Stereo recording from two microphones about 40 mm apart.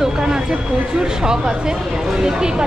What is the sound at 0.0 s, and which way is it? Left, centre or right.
A woman's voice, centre.